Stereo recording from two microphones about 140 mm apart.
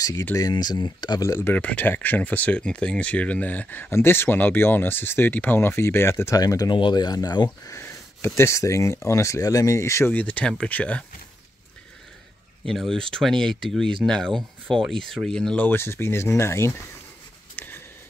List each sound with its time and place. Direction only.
0.4 s speech: 30° left (ahead or behind); by 11.1 s 10° left (ahead or behind)
12.6 s speech: 5° left (ahead or behind); by 16.7 s 20° left (ahead or behind)
17.6 s bird: 15° left (ahead or behind)